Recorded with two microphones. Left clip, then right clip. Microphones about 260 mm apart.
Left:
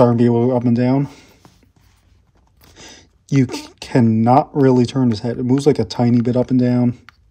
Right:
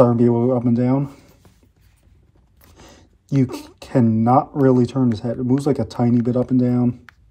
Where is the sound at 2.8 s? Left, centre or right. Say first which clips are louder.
Left 6 dB; left.